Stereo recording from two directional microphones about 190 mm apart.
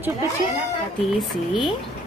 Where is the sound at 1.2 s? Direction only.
Centre (ahead or behind).